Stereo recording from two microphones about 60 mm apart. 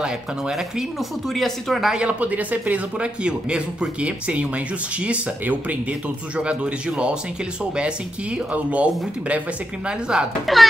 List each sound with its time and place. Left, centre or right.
0.0 s speech: centre
1.9 s a man's voice: centre
10.4 s speech: centre